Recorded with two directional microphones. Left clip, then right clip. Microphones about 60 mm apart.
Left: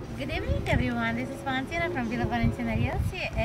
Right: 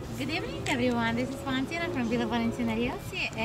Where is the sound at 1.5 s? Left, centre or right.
Left.